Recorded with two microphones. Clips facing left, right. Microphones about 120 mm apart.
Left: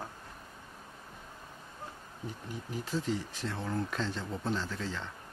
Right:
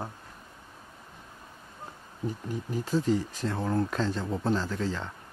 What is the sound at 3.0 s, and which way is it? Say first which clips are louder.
Speech: right 7 dB; 45° right (ahead or behind).